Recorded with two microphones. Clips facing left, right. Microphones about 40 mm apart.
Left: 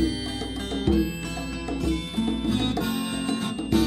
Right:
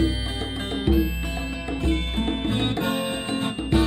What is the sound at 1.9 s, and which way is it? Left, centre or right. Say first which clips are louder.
Music: right 2 dB; right.